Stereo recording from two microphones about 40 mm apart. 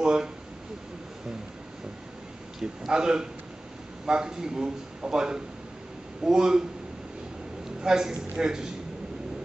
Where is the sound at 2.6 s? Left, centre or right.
Centre.